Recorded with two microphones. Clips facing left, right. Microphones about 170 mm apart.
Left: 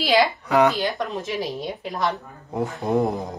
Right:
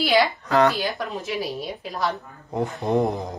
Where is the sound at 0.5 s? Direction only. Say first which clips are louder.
Left 1 dB; 15° left (ahead or behind).